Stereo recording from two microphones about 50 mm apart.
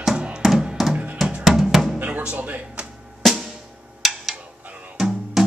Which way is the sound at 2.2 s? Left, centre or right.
Right.